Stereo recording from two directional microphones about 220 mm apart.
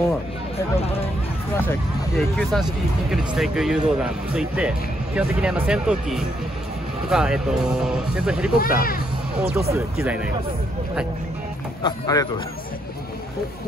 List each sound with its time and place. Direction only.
1.6 s speech: 5° left (ahead or behind)
8.5 s speech: 40° left (ahead or behind)
9.4 s speech: 10° right (ahead or behind)
11.8 s speech: 15° left (ahead or behind)